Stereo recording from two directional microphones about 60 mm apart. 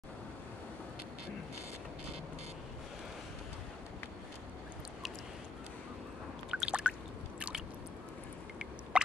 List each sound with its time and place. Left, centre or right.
6.5 s drip: centre
7.3 s squish: centre
8.9 s turkey: centre